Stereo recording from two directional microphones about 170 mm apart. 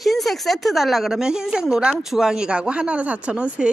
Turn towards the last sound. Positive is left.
turn(degrees=-5)  # may be behind; listen again after turning